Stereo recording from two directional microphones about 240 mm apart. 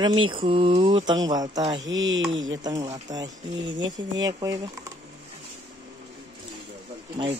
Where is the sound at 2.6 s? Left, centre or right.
Centre.